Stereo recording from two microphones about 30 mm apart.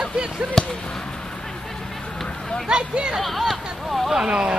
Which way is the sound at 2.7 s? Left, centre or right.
Right.